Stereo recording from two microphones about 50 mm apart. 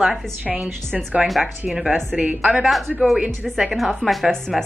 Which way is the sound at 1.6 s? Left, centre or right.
Right.